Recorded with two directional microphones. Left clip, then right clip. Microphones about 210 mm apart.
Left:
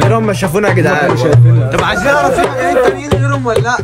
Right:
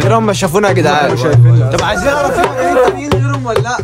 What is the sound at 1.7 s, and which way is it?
Speech, 55° right (ahead or behind).